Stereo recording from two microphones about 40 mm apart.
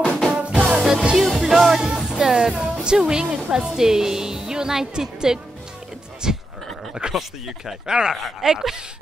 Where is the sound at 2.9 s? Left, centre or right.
Centre.